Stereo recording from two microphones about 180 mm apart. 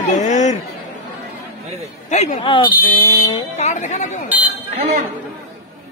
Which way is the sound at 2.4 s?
25° left (ahead or behind).